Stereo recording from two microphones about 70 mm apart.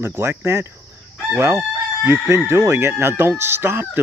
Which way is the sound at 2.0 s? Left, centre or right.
Right.